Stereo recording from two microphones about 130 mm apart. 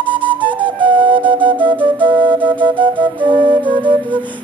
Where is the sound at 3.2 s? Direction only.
40° right (ahead or behind).